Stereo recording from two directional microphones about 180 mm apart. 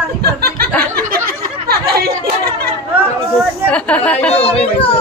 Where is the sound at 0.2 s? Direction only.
60° right (ahead or behind).